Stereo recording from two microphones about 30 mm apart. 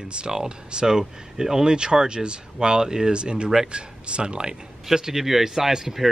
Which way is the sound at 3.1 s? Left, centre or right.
Right.